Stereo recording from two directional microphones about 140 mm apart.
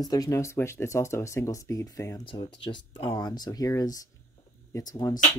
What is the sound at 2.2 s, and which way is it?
Speech, 35° left (ahead or behind).